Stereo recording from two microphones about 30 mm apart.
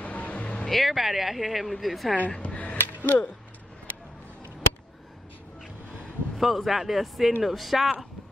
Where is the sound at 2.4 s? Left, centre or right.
Left.